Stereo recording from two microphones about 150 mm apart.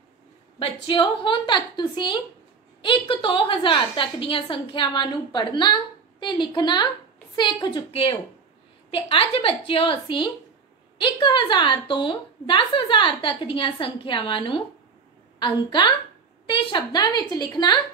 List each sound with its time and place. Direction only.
0.6 s a woman's voice: 35° left (ahead or behind)